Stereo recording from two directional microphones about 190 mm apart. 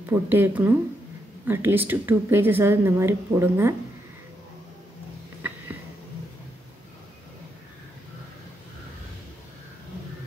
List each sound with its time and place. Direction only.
0.1 s speech: 10° right (ahead or behind)